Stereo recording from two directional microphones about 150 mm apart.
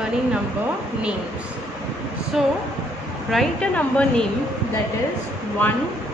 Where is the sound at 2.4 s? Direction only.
5° right (ahead or behind).